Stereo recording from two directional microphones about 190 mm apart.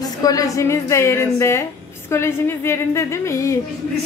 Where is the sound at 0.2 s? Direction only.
20° left (ahead or behind).